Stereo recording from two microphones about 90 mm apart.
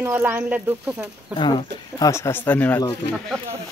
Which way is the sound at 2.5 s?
20° left (ahead or behind).